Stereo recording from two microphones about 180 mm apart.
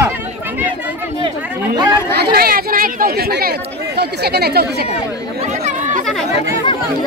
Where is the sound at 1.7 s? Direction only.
25° right (ahead or behind).